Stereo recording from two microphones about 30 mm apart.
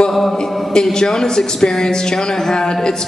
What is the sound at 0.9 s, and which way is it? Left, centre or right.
Speech, centre.